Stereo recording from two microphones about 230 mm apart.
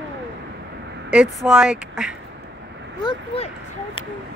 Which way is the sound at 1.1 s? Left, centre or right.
Centre.